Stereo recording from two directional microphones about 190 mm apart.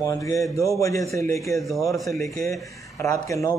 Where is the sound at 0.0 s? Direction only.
15° left (ahead or behind).